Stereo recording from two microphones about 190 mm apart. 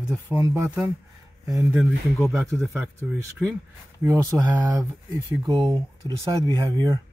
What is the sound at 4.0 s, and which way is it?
Speech, 15° right (ahead or behind).